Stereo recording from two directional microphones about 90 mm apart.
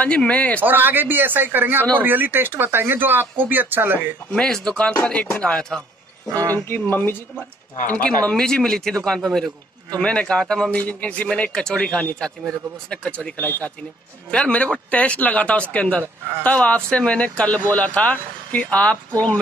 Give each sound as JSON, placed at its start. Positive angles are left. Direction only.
{"t": 0.0, "sound": "speech", "side_deg": 15}
{"t": 0.6, "sound": "speech", "side_deg": -20}
{"t": 4.3, "sound": "speech", "side_deg": 5}
{"t": 6.5, "sound": "speech", "side_deg": 20}
{"t": 16.0, "sound": "speech", "side_deg": -25}
{"t": 16.4, "sound": "speech", "side_deg": 15}